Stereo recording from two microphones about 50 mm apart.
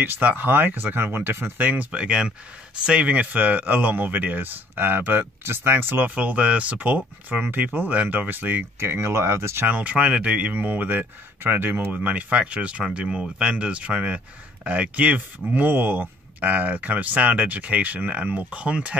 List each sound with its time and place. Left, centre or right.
0.0 s speech: right
6.0 s speech: right
8.7 s speech: right
9.7 s speech: right
11.9 s speech: right